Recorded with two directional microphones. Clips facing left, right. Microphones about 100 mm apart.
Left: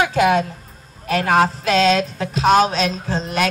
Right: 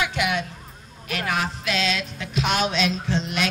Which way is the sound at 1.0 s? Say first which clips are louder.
Left 10 dB; 40° left (ahead or behind).